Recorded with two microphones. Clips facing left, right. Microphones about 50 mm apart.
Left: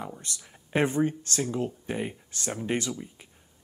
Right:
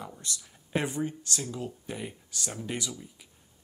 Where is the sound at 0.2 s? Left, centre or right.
Left.